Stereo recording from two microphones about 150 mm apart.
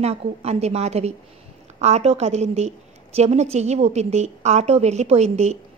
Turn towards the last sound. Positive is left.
turn(degrees=-45)  # may be behind; listen again after turning